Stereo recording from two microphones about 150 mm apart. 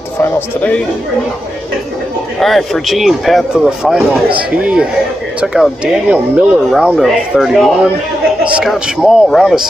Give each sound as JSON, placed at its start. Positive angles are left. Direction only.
{"t": 0.2, "sound": "speech", "side_deg": 10}
{"t": 2.4, "sound": "speech", "side_deg": 0}